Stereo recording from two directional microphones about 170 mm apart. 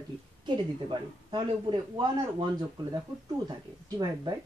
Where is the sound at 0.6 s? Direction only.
30° right (ahead or behind).